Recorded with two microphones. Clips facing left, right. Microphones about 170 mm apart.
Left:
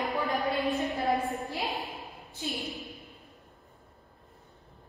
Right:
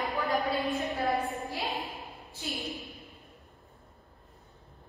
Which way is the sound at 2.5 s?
Centre (ahead or behind).